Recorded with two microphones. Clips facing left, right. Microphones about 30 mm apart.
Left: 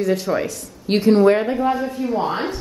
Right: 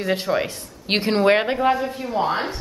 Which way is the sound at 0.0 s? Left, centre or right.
Right.